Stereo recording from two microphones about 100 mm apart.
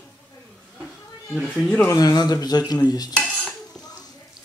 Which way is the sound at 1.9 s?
40° left (ahead or behind).